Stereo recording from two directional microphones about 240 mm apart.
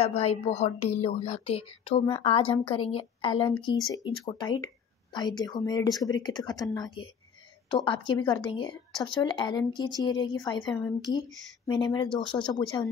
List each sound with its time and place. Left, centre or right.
0.0 s a woman's voice: left; by 11.0 s centre
11.1 s a woman's voice: centre